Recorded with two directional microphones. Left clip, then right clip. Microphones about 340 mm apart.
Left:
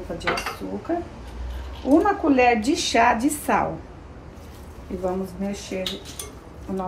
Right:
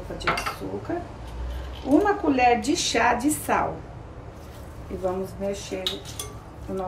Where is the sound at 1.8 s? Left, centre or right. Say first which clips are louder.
Left 2 dB; centre.